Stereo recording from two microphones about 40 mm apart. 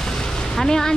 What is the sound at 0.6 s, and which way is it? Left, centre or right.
Speech, centre.